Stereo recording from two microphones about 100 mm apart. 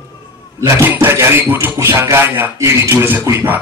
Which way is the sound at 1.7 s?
30° right (ahead or behind).